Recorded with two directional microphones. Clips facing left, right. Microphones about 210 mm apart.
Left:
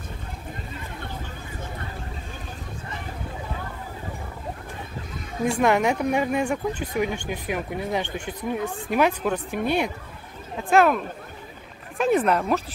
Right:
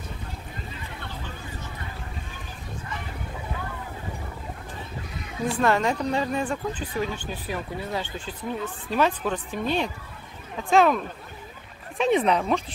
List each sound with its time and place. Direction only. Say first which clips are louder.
5.6 s speech: left 2 dB; 15° left (ahead or behind)